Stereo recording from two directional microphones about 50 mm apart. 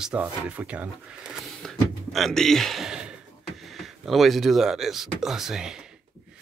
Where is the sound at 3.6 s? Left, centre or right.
Centre.